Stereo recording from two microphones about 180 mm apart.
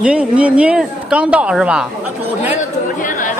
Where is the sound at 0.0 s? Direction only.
5° right (ahead or behind).